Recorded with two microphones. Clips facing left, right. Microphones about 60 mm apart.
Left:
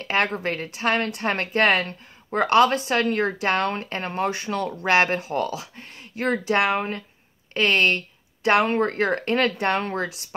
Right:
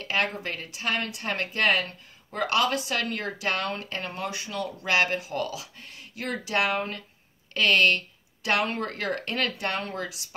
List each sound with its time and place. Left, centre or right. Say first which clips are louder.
0.0 s a woman's voice: left 5 dB; left